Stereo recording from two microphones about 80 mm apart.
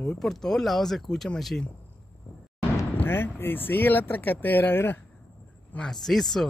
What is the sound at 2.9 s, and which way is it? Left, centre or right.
Speech, left.